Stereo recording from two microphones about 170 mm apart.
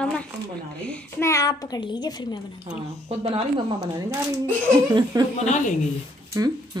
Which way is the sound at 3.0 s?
35° right (ahead or behind).